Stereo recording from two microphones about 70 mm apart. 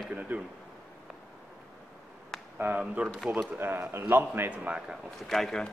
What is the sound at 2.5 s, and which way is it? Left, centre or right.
Speech, right.